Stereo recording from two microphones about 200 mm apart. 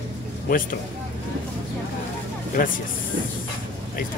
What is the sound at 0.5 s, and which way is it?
Speech, 45° left (ahead or behind).